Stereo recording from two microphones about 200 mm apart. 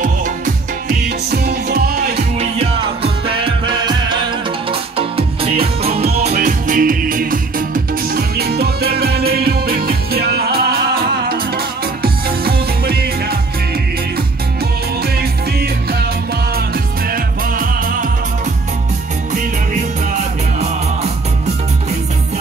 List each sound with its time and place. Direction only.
0.8 s music: 50° right (ahead or behind)
3.3 s music: 25° right (ahead or behind)
6.3 s music: 45° right (ahead or behind)